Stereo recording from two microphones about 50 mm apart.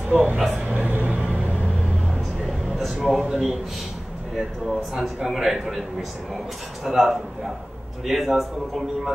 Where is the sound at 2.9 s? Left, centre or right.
Centre.